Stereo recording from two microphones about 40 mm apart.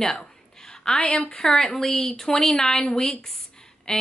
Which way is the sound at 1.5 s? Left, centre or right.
Centre.